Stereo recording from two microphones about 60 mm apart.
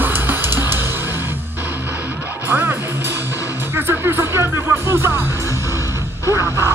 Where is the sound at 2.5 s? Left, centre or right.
Right.